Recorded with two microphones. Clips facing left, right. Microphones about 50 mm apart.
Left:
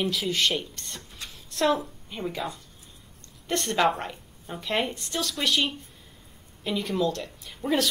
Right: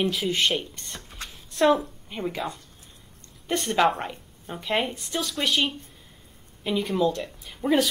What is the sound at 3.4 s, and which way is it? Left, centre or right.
A woman's voice, centre.